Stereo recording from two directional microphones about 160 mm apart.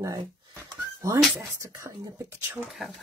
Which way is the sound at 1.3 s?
20° right (ahead or behind).